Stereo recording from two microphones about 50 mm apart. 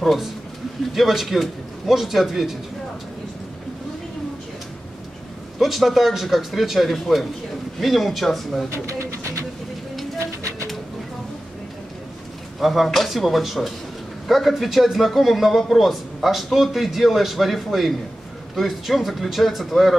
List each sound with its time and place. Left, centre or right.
0.0 s a man's voice: centre
5.6 s a man's voice: centre
8.7 s bird: right
12.5 s a man's voice: centre